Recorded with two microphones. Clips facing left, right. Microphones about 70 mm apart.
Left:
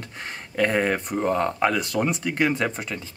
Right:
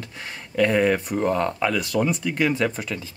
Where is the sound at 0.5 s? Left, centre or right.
Left.